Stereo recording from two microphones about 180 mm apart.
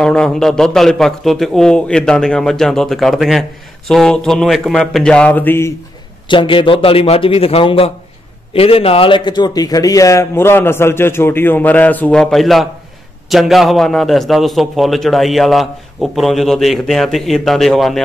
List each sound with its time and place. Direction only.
0.0 s a man's voice: 5° left (ahead or behind)
6.2 s a man's voice: 25° left (ahead or behind); by 18.0 s centre (ahead or behind)